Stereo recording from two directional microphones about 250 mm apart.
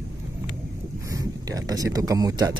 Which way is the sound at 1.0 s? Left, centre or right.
Centre.